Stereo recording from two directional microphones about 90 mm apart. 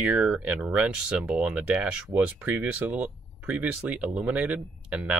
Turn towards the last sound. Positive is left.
turn(degrees=-10)  # may be behind; listen again after turning